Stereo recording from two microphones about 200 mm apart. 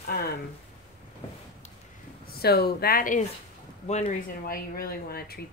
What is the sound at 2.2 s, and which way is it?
Speech, 50° left (ahead or behind).